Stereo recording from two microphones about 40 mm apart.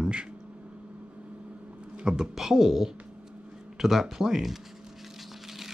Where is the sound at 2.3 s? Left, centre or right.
Centre.